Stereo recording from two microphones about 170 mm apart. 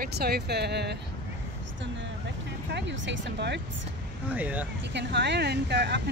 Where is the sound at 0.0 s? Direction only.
65° right (ahead or behind).